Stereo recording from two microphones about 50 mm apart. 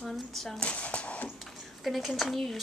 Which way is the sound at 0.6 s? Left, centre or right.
Left.